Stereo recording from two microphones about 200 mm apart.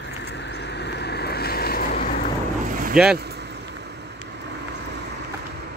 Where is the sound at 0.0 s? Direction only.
60° left (ahead or behind); by 2.2 s 45° left (ahead or behind).